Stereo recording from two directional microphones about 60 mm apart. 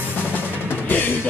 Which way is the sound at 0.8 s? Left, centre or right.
Left.